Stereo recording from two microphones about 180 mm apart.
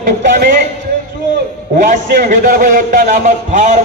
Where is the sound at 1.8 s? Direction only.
50° right (ahead or behind).